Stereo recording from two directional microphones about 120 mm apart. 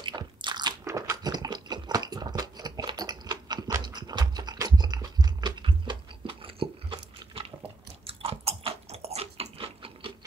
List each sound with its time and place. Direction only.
0.0 s biting: 40° right (ahead or behind)
0.8 s a sound: 25° right (ahead or behind); by 7.5 s 50° right (ahead or behind)
8.1 s biting: 55° right (ahead or behind)